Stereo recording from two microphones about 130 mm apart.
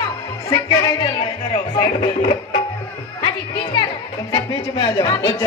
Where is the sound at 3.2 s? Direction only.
40° left (ahead or behind).